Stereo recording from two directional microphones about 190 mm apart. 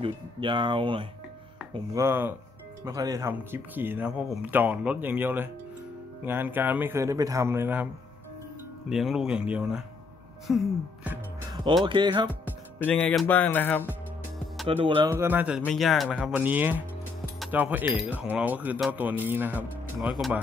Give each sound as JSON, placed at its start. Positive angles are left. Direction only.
{"t": 0.0, "sound": "speech", "side_deg": -25}
{"t": 1.7, "sound": "speech", "side_deg": -15}
{"t": 11.8, "sound": "speech", "side_deg": -25}
{"t": 12.7, "sound": "speech", "side_deg": 10}
{"t": 14.7, "sound": "speech", "side_deg": -30}
{"t": 15.0, "sound": "speech", "side_deg": -10}